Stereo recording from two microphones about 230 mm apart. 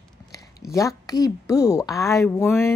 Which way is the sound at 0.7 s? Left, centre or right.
Centre.